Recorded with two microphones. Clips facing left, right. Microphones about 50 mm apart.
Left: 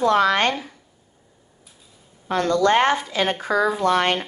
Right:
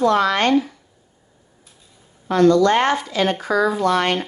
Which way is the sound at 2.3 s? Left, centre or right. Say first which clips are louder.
Right 4 dB; left.